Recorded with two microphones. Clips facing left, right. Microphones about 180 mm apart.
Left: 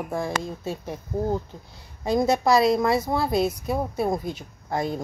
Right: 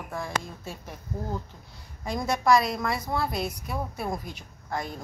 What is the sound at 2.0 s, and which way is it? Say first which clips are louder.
A woman's voice: left 6 dB; 30° left (ahead or behind).